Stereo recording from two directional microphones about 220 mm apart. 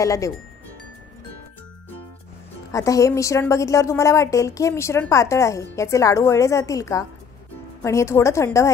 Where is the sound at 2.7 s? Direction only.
15° left (ahead or behind).